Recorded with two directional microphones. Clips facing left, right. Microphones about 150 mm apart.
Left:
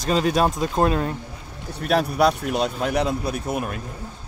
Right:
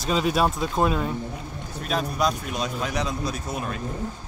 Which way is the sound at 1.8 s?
65° left (ahead or behind).